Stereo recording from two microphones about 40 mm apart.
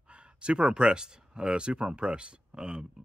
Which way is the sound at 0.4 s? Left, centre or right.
Right.